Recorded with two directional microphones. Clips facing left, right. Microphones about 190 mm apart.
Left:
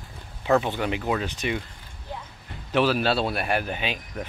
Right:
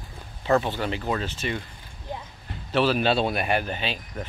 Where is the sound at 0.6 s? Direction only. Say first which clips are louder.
Left 1 dB; 10° left (ahead or behind).